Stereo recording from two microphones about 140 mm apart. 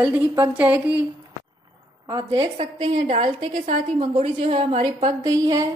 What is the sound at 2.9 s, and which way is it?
A woman's voice, 50° right (ahead or behind).